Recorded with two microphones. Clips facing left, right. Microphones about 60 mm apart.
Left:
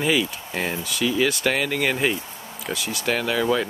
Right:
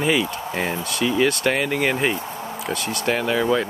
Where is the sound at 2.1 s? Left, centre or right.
Right.